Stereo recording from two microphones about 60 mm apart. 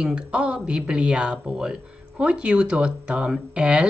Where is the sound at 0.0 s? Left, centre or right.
Centre.